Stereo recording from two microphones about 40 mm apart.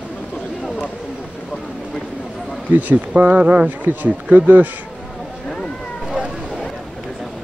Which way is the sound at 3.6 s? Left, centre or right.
Right.